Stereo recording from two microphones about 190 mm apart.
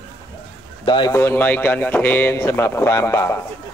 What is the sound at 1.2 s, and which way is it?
Speech, 10° left (ahead or behind).